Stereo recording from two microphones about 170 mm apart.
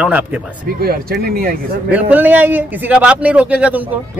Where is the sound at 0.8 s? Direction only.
65° right (ahead or behind).